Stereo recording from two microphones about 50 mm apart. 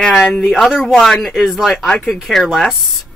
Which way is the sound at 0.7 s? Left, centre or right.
Centre.